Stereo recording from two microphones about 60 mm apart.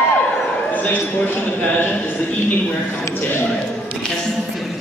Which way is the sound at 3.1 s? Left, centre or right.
Left.